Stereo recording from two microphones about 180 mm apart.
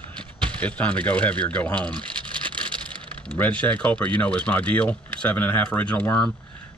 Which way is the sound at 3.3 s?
5° left (ahead or behind).